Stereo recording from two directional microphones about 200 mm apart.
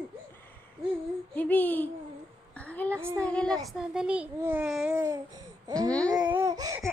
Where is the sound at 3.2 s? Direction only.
5° left (ahead or behind).